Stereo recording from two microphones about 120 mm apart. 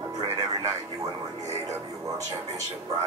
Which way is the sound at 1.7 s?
30° right (ahead or behind).